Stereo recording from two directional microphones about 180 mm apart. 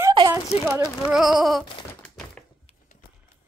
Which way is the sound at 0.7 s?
5° right (ahead or behind).